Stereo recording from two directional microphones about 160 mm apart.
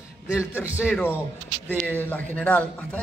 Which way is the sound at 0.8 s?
10° left (ahead or behind).